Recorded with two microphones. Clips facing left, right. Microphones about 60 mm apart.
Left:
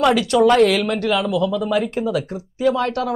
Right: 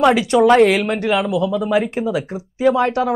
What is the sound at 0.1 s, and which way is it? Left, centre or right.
Speech, centre.